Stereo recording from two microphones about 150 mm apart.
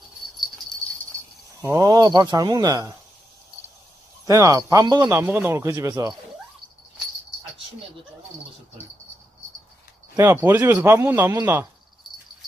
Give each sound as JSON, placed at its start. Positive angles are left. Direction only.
{"t": 1.6, "sound": "speech", "side_deg": -25}
{"t": 4.3, "sound": "speech", "side_deg": -25}
{"t": 5.1, "sound": "speech", "side_deg": -10}
{"t": 10.1, "sound": "a man's voice", "side_deg": -15}